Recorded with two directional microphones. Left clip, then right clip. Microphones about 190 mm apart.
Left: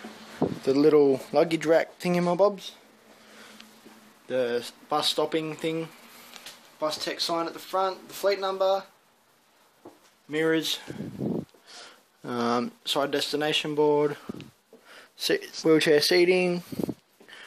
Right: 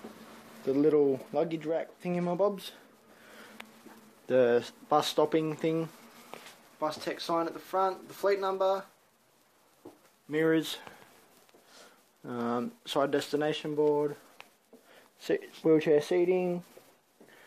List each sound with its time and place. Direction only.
0.7 s speech: 15° left (ahead or behind)
4.3 s speech: 15° right (ahead or behind); by 8.8 s centre (ahead or behind)
10.3 s speech: centre (ahead or behind)
12.2 s speech: 15° left (ahead or behind)
13.7 s speech: 30° left (ahead or behind)
15.2 s speech: 10° left (ahead or behind)